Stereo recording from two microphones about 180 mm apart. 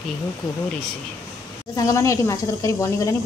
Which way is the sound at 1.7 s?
20° left (ahead or behind).